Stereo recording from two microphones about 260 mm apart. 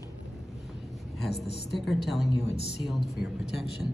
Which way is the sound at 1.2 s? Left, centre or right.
Left.